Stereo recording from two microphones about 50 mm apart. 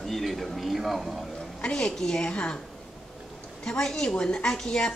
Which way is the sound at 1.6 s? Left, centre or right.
Centre.